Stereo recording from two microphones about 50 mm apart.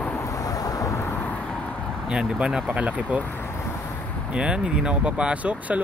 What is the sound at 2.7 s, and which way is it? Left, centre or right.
Speech, right.